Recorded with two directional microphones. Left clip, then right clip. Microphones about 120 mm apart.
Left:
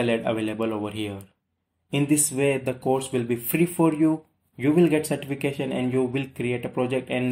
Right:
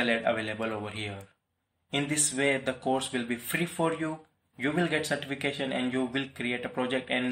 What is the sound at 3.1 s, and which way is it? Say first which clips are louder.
Speech: left 6 dB; 25° right (ahead or behind).